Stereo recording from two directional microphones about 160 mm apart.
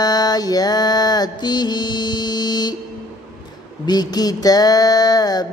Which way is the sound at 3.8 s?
25° left (ahead or behind).